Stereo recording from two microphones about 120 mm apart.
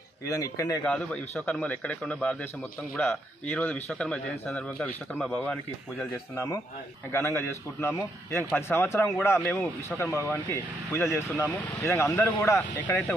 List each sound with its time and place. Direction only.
0.3 s speech: 30° left (ahead or behind)
0.8 s speech: 10° left (ahead or behind)
6.3 s speech: 25° left (ahead or behind)